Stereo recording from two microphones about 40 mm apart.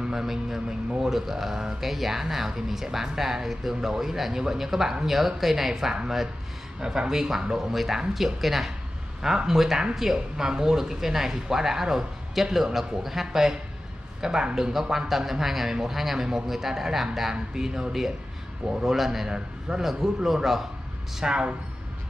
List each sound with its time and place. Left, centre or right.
0.1 s speech: centre
1.1 s speech: centre
21.2 s speech: right